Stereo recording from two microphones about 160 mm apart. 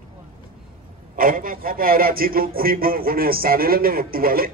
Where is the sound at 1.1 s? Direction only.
60° right (ahead or behind).